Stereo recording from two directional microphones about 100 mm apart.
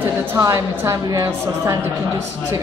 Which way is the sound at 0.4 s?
30° right (ahead or behind).